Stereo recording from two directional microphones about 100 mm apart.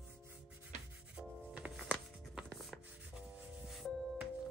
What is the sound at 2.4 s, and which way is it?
Rub, centre (ahead or behind).